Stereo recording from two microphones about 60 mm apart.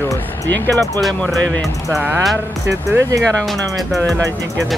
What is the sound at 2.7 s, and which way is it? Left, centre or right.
Speech, right.